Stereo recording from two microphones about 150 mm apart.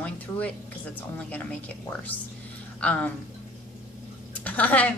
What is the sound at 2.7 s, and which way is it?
Speech, 10° left (ahead or behind).